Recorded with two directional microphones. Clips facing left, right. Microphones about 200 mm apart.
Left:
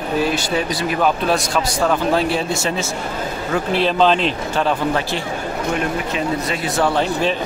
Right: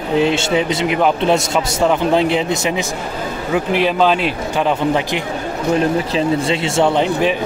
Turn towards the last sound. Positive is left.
turn(degrees=-20)  # may be behind; listen again after turning